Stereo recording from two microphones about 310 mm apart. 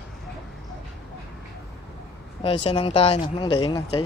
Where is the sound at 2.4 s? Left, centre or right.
Centre.